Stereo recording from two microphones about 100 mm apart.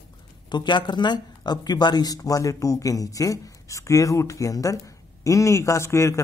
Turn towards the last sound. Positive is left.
turn(degrees=30)  # may be behind; listen again after turning